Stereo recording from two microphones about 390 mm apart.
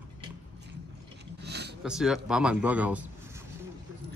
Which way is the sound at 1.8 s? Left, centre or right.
Centre.